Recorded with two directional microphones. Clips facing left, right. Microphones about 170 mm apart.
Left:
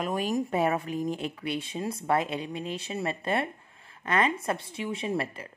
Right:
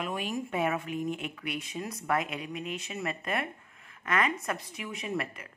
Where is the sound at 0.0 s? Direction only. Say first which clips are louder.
Left 5 dB; 40° left (ahead or behind).